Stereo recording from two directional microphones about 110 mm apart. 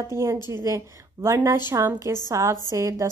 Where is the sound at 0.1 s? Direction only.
25° right (ahead or behind).